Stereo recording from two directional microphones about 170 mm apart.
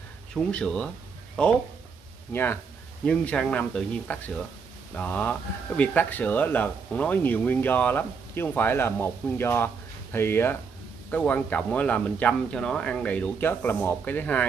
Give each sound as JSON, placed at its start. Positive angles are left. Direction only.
{"t": 0.3, "sound": "speech", "side_deg": 5}